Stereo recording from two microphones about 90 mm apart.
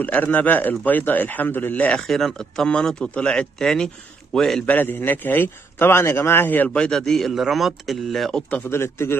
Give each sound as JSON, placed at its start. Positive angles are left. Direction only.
{"t": 0.0, "sound": "a man's voice", "side_deg": 20}
{"t": 2.0, "sound": "a man's voice", "side_deg": 5}
{"t": 4.7, "sound": "a man's voice", "side_deg": 20}
{"t": 8.7, "sound": "a man's voice", "side_deg": 30}